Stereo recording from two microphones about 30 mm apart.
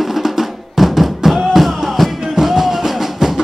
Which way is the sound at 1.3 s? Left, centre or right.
Centre.